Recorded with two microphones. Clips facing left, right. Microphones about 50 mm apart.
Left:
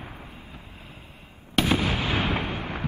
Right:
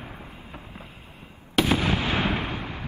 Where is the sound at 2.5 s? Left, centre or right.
Left.